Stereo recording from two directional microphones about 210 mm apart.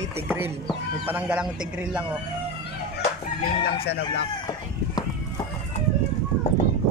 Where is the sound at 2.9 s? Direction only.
50° left (ahead or behind).